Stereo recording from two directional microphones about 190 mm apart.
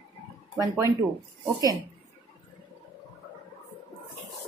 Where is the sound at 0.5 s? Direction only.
15° right (ahead or behind).